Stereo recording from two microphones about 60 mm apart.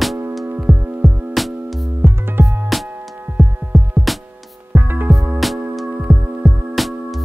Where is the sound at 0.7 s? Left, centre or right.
Centre.